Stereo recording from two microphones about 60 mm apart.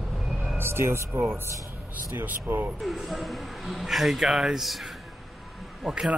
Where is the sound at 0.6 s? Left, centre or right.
Right.